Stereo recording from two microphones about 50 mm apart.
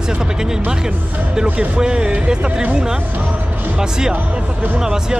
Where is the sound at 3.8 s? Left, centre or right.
Centre.